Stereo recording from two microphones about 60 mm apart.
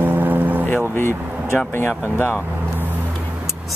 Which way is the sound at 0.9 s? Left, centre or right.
Left.